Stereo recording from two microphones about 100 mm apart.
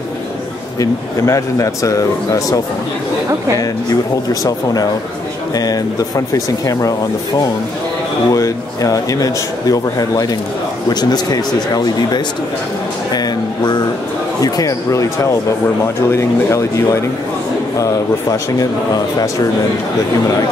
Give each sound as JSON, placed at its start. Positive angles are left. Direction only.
{"t": 0.7, "sound": "speech", "side_deg": 30}
{"t": 4.3, "sound": "speech", "side_deg": 40}
{"t": 8.3, "sound": "speech", "side_deg": 35}
{"t": 16.1, "sound": "speech", "side_deg": 25}